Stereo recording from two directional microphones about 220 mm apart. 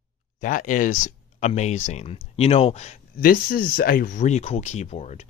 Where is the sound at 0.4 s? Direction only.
35° left (ahead or behind).